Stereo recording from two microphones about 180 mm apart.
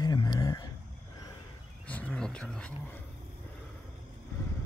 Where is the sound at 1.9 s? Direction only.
5° left (ahead or behind).